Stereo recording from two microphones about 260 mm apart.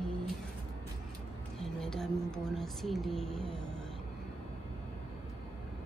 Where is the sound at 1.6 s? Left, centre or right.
Centre.